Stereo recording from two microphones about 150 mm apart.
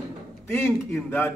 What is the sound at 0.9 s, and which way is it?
Speech, 10° left (ahead or behind).